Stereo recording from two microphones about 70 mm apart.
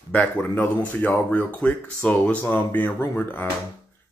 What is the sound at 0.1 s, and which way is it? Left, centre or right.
Speech, left.